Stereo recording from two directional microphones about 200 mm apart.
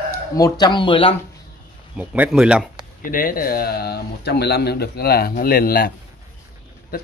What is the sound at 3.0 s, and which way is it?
Speech, 45° left (ahead or behind).